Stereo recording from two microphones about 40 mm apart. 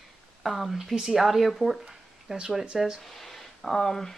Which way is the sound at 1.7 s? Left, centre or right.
Centre.